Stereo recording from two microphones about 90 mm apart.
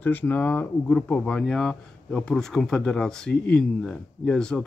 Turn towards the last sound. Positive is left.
turn(degrees=10)  # may be behind; listen again after turning